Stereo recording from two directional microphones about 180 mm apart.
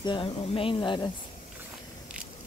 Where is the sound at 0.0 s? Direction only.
25° left (ahead or behind).